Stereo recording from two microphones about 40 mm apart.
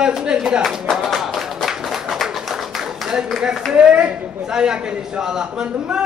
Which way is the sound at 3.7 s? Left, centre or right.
Right.